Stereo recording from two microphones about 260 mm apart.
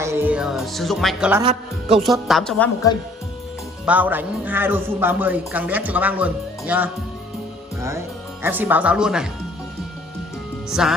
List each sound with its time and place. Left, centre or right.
0.0 s speech: centre
1.4 s speech: right
2.0 s speech: centre
3.8 s speech: centre
10.7 s speech: centre